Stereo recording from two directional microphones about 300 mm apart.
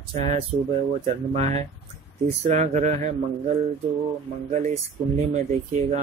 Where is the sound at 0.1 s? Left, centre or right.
Right.